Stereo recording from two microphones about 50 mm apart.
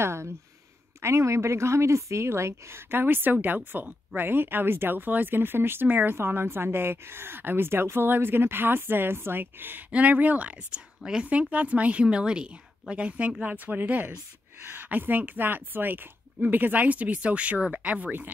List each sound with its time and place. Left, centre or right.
0.0 s speech: right
1.0 s speech: right
2.9 s speech: right
4.2 s a woman's voice: right
6.1 s a woman's voice: right
9.8 s a woman's voice: right
14.6 s a sound: right
14.9 s speech: right